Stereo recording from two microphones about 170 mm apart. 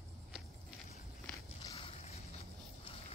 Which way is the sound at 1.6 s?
25° left (ahead or behind).